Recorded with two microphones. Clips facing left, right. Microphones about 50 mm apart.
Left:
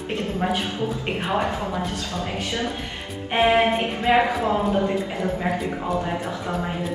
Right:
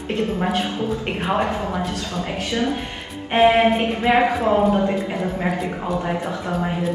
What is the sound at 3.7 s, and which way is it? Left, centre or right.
Speech, centre.